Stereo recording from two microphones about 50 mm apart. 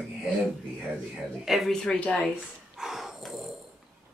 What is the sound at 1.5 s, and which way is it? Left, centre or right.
Speech, centre.